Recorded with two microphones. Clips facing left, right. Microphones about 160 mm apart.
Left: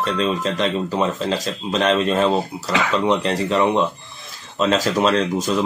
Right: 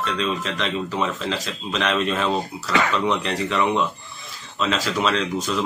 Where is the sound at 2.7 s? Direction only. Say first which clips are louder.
Even; 5° left (ahead or behind).